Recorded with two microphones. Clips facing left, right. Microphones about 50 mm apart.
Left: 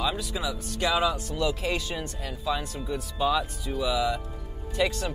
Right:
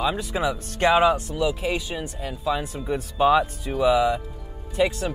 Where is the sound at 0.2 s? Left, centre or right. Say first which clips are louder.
Right 6 dB; right.